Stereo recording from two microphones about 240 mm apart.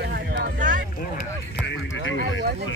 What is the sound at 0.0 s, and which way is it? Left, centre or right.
Vehicle, right.